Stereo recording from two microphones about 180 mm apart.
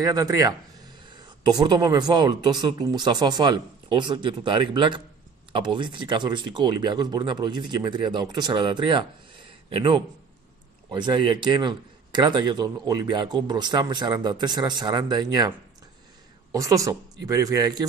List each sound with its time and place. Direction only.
0.0 s a man's voice: 20° right (ahead or behind)
16.5 s a man's voice: 20° right (ahead or behind)